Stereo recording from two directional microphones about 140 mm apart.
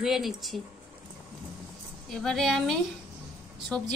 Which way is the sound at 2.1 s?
Centre (ahead or behind).